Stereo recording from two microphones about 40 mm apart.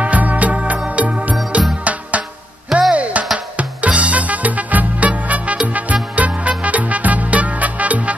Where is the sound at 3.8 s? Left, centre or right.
Right.